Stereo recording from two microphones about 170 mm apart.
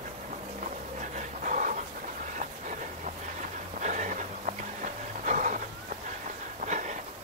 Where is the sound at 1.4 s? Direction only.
50° right (ahead or behind).